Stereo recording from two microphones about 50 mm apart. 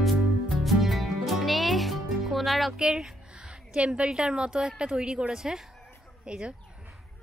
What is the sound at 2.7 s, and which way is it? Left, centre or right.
A woman's voice, centre.